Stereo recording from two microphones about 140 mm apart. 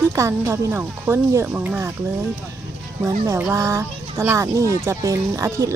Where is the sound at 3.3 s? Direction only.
15° right (ahead or behind).